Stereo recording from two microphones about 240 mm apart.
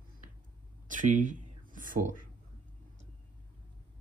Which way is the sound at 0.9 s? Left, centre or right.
Right.